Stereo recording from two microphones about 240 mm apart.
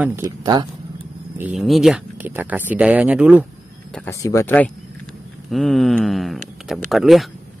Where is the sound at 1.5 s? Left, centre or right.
Centre.